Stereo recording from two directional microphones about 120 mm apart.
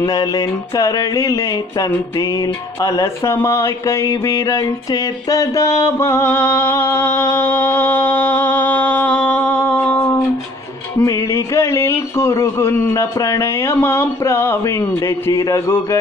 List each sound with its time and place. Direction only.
0.0 s speech: 30° left (ahead or behind)
3.4 s a sound: 25° left (ahead or behind)
11.0 s speech: 25° left (ahead or behind)